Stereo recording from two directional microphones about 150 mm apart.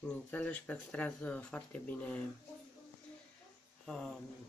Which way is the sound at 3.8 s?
5° left (ahead or behind).